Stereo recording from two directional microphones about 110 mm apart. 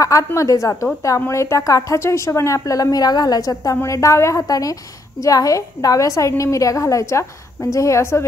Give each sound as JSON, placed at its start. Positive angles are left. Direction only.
{"t": 0.0, "sound": "a woman's voice", "side_deg": 30}